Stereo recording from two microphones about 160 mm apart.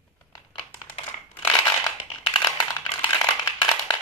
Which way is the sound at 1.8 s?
25° left (ahead or behind).